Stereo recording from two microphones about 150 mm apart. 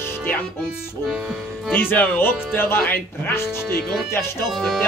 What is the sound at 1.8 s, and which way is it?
Speech, 10° left (ahead or behind).